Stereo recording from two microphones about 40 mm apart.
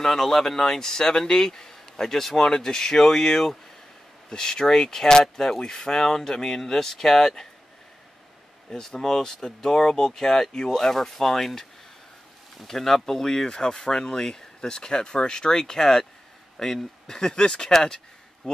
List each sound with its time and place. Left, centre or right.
0.0 s speech: centre
8.6 s speech: centre
12.6 s speech: centre